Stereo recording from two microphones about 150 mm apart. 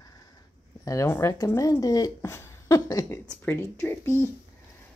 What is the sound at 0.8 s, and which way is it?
Speech, 20° left (ahead or behind).